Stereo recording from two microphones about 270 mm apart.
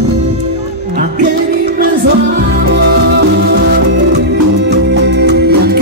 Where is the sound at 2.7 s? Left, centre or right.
Right.